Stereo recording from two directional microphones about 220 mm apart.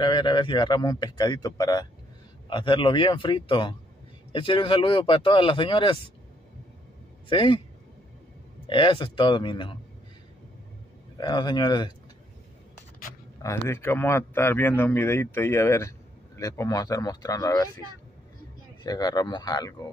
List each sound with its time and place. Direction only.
0.0 s speech: 20° left (ahead or behind)
7.2 s speech: 20° left (ahead or behind)
8.6 s speech: 20° left (ahead or behind)
11.1 s speech: 20° left (ahead or behind)
13.4 s a man's voice: 15° left (ahead or behind)
18.9 s a man's voice: 15° left (ahead or behind)